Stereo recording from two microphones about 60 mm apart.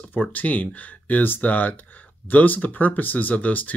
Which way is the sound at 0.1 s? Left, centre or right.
Left.